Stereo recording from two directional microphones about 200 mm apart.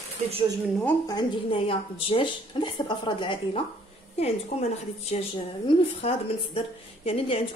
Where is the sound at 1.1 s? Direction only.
25° left (ahead or behind).